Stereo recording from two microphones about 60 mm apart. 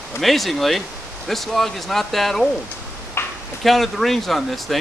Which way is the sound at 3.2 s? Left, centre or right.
Left.